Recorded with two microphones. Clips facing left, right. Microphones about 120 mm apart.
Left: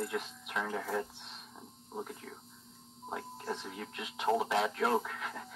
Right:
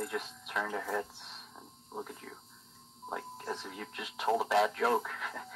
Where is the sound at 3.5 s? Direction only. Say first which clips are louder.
Left 1 dB; 20° left (ahead or behind).